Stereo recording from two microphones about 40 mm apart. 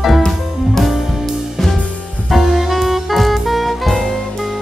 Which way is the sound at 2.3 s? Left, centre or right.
Centre.